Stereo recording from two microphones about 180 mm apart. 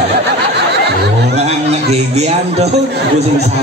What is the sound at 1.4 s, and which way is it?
A man's voice, 35° right (ahead or behind).